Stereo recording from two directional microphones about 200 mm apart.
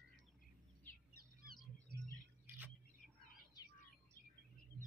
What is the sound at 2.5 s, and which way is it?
Bird, 10° right (ahead or behind).